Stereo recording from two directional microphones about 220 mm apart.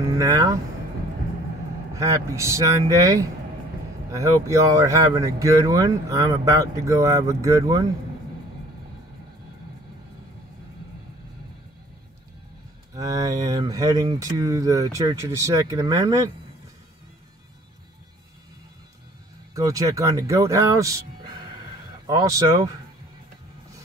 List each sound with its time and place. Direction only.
0.2 s speech: 15° right (ahead or behind)
2.0 s speech: 15° right (ahead or behind)
12.9 s speech: 15° right (ahead or behind)
19.5 s speech: 15° right (ahead or behind)